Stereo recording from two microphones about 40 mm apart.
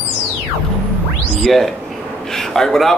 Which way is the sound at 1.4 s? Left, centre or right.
Centre.